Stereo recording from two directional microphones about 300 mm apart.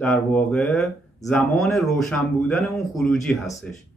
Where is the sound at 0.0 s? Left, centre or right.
Centre.